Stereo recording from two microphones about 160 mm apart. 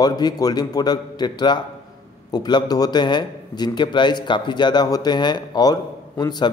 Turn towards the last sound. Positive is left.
turn(degrees=25)  # may be behind; listen again after turning